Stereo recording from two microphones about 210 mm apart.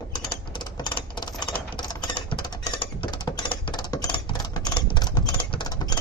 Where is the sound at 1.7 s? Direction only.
20° left (ahead or behind).